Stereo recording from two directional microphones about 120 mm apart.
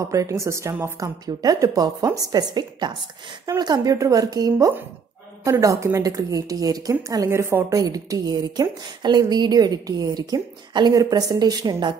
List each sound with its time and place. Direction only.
0.1 s a woman's voice: 25° right (ahead or behind)
7.8 s a woman's voice: 30° right (ahead or behind)